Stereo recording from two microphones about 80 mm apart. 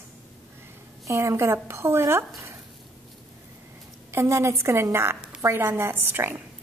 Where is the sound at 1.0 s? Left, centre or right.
Right.